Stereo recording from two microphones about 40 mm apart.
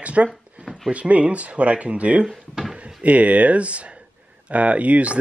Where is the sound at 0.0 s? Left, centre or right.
Right.